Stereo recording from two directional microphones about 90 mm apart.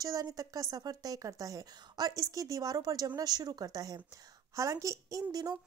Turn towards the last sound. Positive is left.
turn(degrees=-40)  # may be behind; listen again after turning